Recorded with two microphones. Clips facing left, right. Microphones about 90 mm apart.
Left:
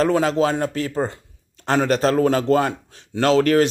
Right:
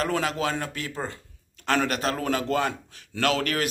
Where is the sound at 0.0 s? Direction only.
30° left (ahead or behind).